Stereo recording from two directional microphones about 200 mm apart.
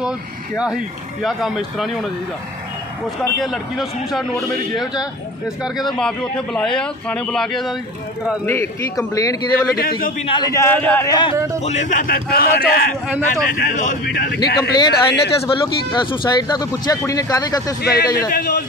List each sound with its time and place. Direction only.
0.6 s a man's voice: 5° right (ahead or behind)
3.3 s a man's voice: centre (ahead or behind)
8.5 s a man's voice: 15° left (ahead or behind)
9.8 s a man's voice: 45° left (ahead or behind)
10.2 s a man's voice: 20° left (ahead or behind)
11.3 s a man's voice: 15° right (ahead or behind)
11.6 s a man's voice: 35° left (ahead or behind)
14.7 s speech: 20° left (ahead or behind)
17.8 s a man's voice: 50° left (ahead or behind)